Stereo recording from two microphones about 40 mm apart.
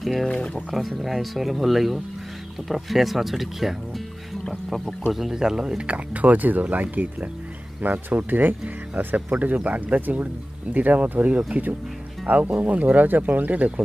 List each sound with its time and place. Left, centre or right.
0.0 s speech: centre
0.3 s speech: left
1.0 s speech: centre
5.3 s speech: centre
5.8 s speech: right